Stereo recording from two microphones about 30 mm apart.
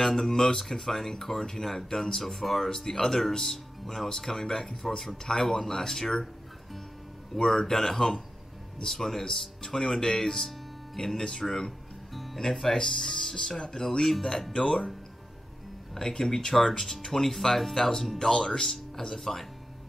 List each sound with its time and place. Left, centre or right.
0.0 s speech: centre
5.2 s speech: left
7.3 s speech: left
7.6 s speech: centre
12.1 s music: centre
12.4 s speech: centre
14.1 s speech: centre
16.1 s speech: centre